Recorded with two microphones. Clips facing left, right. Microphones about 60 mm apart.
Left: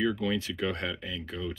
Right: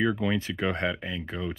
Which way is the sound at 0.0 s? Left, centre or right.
Right.